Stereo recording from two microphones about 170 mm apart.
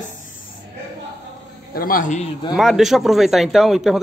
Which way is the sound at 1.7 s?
55° left (ahead or behind).